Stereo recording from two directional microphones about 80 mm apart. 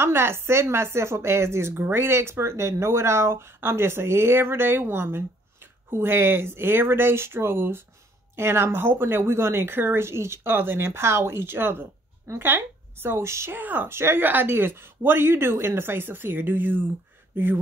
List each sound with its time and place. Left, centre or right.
0.0 s a woman's voice: right
13.6 s a woman's voice: right